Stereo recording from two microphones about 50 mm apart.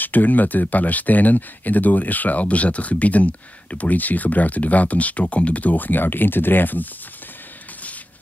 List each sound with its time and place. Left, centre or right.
0.0 s speech: left